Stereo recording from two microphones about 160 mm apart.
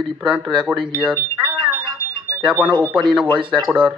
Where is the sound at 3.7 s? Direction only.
5° right (ahead or behind).